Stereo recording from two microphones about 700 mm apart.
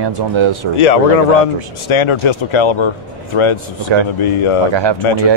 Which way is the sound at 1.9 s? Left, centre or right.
Left.